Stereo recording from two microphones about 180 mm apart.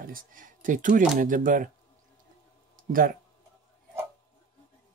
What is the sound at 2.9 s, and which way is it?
Speech, 50° right (ahead or behind).